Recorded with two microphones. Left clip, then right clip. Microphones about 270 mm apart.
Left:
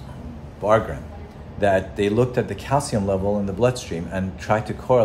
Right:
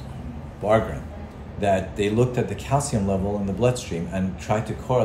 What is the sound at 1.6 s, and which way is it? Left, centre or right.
A man's voice, centre.